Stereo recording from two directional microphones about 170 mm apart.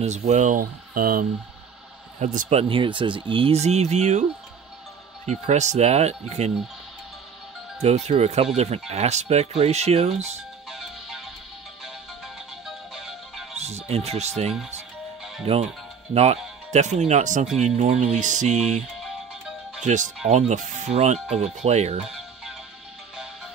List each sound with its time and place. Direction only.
0.0 s speech: 40° right (ahead or behind); by 1.2 s 55° right (ahead or behind)
2.1 s speech: 45° right (ahead or behind)
2.7 s speech: 30° right (ahead or behind)
7.8 s speech: 40° right (ahead or behind)
10.7 s music: centre (ahead or behind)
12.6 s music: centre (ahead or behind)
13.6 s speech: 40° right (ahead or behind)
16.7 s speech: 40° right (ahead or behind)
19.8 s speech: 45° right (ahead or behind)